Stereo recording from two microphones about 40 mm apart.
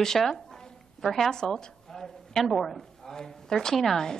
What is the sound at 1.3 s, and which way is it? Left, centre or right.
A woman's voice, centre.